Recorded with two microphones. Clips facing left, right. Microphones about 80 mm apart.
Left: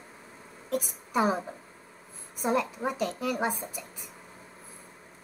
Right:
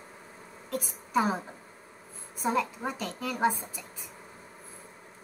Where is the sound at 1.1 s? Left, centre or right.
Centre.